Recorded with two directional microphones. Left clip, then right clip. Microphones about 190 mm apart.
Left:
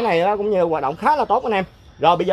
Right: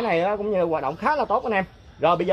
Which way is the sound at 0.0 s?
50° left (ahead or behind).